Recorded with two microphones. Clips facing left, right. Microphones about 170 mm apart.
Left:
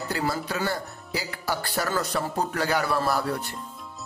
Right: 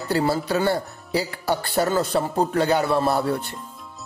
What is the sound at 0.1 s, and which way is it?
Speech, 30° right (ahead or behind).